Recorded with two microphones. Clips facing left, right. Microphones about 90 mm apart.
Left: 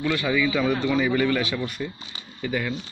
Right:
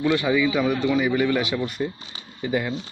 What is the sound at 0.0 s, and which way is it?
Speech, 20° right (ahead or behind).